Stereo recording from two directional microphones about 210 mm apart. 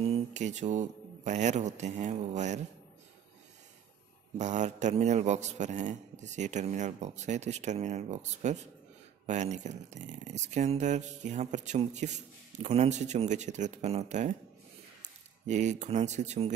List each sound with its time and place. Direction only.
0.0 s speech: 30° right (ahead or behind)
4.4 s speech: 35° right (ahead or behind)
15.4 s speech: 35° right (ahead or behind)